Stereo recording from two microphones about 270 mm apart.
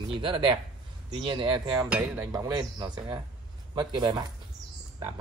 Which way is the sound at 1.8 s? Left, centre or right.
Centre.